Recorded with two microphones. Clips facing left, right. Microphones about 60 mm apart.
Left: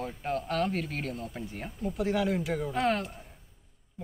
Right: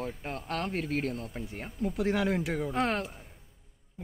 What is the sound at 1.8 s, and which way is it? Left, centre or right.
Speech, right.